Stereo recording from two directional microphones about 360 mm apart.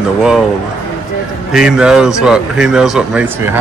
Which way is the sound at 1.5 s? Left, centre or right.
Centre.